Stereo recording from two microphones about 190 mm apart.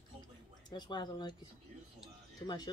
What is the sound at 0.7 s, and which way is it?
Speech, 20° left (ahead or behind).